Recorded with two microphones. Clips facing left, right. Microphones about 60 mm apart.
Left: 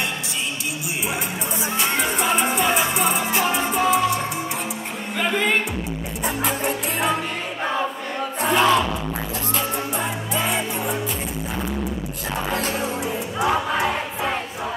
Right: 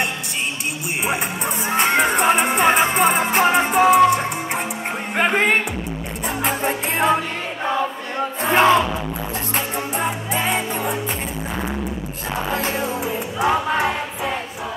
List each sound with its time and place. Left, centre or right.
1.7 s music: right
5.1 s music: right
6.6 s music: right
8.4 s music: right
9.9 s music: right
12.4 s music: right